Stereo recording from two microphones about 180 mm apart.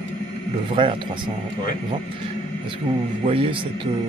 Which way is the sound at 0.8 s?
25° right (ahead or behind).